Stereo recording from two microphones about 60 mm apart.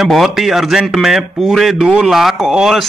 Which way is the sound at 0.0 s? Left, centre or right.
Centre.